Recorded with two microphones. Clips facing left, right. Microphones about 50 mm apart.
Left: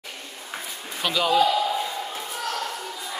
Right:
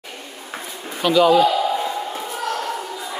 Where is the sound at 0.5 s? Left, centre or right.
Centre.